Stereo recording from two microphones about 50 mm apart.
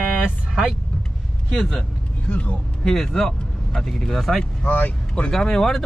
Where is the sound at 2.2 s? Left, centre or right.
Left.